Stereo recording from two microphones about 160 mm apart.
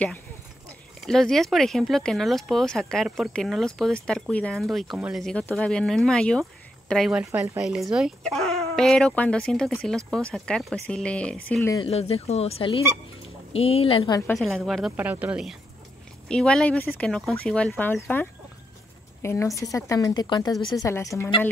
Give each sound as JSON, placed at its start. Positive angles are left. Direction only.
{"t": 1.0, "sound": "speech", "side_deg": 5}
{"t": 7.2, "sound": "speech", "side_deg": -10}
{"t": 11.8, "sound": "speech", "side_deg": 40}
{"t": 14.3, "sound": "speech", "side_deg": 0}
{"t": 14.9, "sound": "speech", "side_deg": -10}
{"t": 16.3, "sound": "speech", "side_deg": 5}